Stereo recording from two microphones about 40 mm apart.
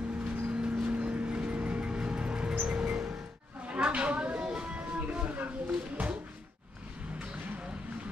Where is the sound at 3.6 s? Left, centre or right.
Right.